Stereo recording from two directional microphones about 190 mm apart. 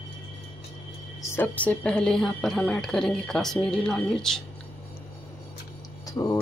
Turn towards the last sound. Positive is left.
turn(degrees=15)  # may be behind; listen again after turning